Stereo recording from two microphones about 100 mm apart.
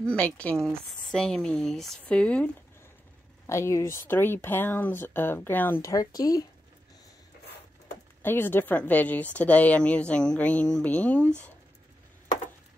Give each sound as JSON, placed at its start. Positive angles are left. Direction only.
{"t": 0.0, "sound": "a woman's voice", "side_deg": 15}
{"t": 3.4, "sound": "speech", "side_deg": 30}
{"t": 5.8, "sound": "speech", "side_deg": 35}
{"t": 8.2, "sound": "a woman's voice", "side_deg": 20}